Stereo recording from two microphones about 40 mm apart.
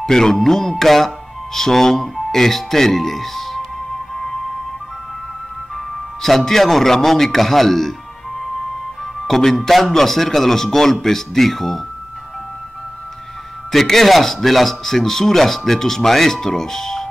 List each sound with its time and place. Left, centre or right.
0.0 s speech: centre
4.1 s music: centre
6.2 s speech: centre
9.3 s speech: centre
13.7 s speech: centre